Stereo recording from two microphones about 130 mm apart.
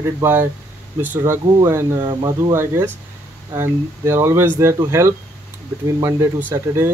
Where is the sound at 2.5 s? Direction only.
20° right (ahead or behind).